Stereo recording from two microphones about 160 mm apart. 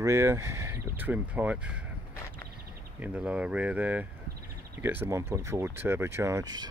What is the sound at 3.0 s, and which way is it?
Speech, 10° right (ahead or behind).